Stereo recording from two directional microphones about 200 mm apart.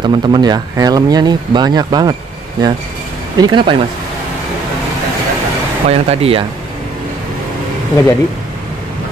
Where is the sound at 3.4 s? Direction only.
25° right (ahead or behind).